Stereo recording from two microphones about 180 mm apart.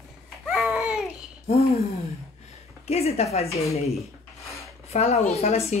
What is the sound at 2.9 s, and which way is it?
Speech, 35° left (ahead or behind).